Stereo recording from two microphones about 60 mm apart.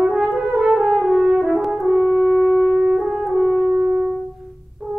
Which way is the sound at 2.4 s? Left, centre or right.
Centre.